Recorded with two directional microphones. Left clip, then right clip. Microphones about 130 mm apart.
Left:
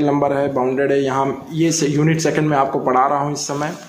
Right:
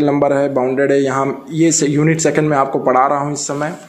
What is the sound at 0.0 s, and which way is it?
Speech, 30° right (ahead or behind).